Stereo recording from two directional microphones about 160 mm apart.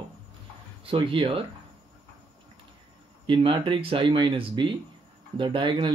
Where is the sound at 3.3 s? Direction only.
30° right (ahead or behind).